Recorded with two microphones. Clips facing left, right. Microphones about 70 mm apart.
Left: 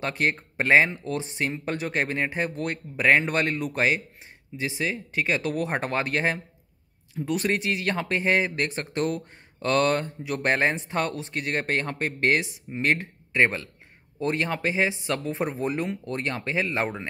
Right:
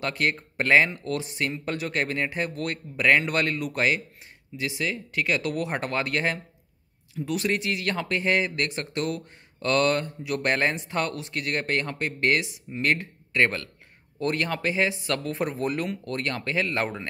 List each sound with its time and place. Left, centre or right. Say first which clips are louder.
0.0 s speech: even; left